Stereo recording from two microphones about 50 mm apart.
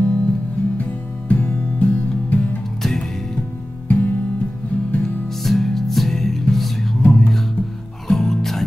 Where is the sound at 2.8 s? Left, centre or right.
Centre.